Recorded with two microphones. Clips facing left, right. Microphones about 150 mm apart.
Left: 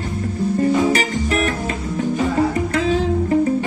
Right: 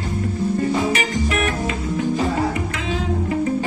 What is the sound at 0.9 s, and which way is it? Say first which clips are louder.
Music: left 2 dB; 40° left (ahead or behind).